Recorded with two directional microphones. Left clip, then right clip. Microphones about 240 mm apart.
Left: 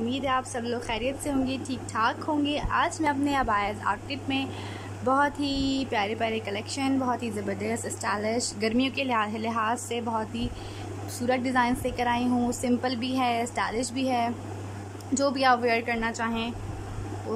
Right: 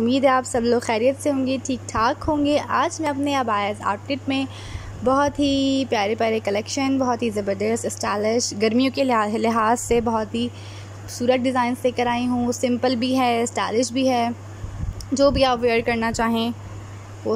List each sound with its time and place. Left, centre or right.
0.1 s a woman's voice: right